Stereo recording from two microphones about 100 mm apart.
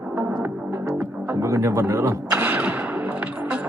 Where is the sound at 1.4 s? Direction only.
30° right (ahead or behind).